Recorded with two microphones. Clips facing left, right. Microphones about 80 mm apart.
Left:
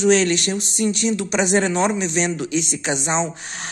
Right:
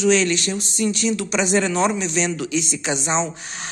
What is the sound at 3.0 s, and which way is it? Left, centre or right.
Speech, centre.